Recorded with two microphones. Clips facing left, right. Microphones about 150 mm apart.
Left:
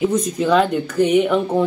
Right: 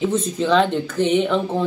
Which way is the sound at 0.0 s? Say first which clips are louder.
Left 2 dB; 10° left (ahead or behind).